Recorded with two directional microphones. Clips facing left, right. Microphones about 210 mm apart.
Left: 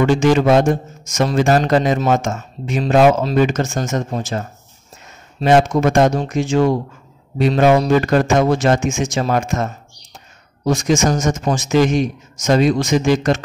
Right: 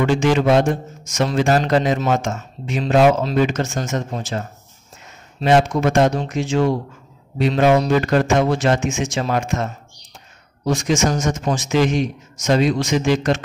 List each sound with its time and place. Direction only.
0.0 s a man's voice: 45° left (ahead or behind)
5.4 s a man's voice: 45° left (ahead or behind)